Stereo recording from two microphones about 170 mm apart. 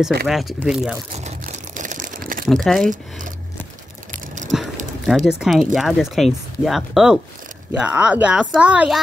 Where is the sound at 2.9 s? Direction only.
50° right (ahead or behind).